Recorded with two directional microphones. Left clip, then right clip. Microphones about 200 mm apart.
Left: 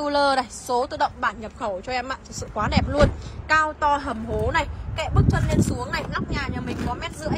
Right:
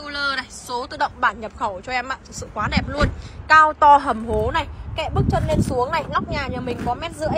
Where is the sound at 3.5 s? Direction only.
Centre (ahead or behind).